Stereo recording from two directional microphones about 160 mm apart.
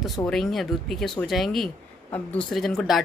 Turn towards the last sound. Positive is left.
turn(degrees=0)  # may be behind; listen again after turning